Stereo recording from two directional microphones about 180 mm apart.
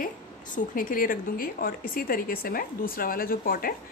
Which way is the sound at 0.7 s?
50° left (ahead or behind).